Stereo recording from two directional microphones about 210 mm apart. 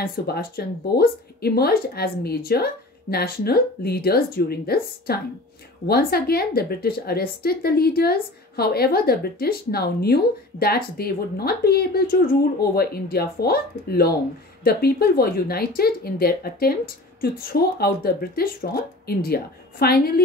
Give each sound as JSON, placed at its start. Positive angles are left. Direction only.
{"t": 0.0, "sound": "a woman's voice", "side_deg": 45}